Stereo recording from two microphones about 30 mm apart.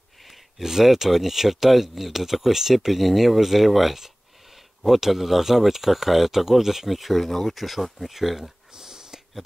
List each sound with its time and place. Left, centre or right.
0.6 s speech: centre
6.9 s speech: centre
8.7 s a sound: right